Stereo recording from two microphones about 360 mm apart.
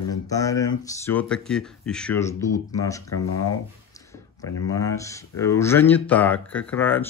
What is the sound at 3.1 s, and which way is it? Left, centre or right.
Speech, left.